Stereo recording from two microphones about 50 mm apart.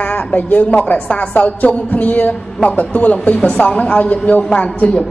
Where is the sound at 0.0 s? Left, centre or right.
Left.